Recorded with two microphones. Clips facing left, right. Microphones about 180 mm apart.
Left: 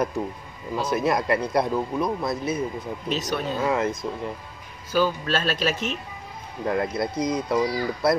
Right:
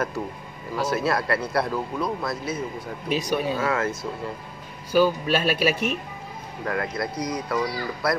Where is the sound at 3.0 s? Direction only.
10° right (ahead or behind).